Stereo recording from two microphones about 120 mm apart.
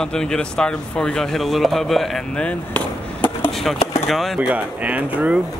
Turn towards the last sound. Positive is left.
turn(degrees=-15)  # may be behind; listen again after turning